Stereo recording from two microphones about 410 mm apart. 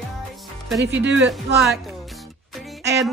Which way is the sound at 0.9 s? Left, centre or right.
Right.